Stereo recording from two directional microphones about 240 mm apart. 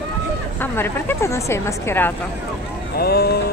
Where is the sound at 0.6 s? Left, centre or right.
Centre.